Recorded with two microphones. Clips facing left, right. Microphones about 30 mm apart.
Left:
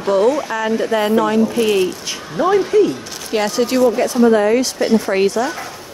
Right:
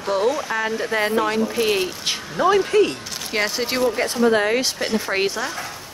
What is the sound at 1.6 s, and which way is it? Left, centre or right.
Speech, centre.